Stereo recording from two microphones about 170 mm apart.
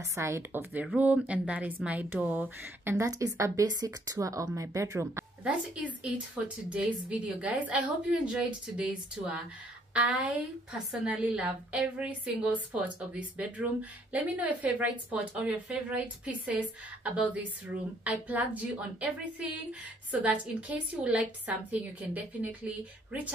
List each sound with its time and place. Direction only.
0.1 s a woman's voice: 15° right (ahead or behind)
5.4 s a woman's voice: 5° right (ahead or behind)
17.0 s a woman's voice: 10° right (ahead or behind)
20.1 s a woman's voice: 10° right (ahead or behind)